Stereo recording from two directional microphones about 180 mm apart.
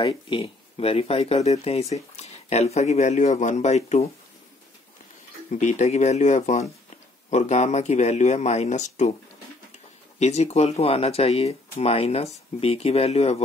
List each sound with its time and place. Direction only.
0.0 s speech: 30° left (ahead or behind)
5.5 s speech: 40° left (ahead or behind)
10.1 s speech: 40° left (ahead or behind)